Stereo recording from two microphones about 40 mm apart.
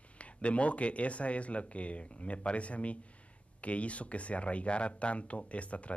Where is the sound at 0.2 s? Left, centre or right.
Left.